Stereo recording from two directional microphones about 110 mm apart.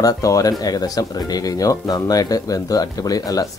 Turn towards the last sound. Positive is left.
turn(degrees=30)  # may be behind; listen again after turning